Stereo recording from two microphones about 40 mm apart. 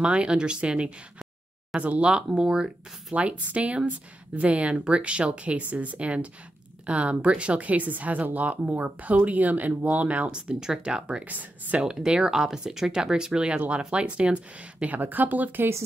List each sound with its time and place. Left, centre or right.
0.0 s speech: right
3.2 s speech: right
10.3 s speech: centre
11.2 s speech: right
11.8 s speech: right
15.0 s speech: right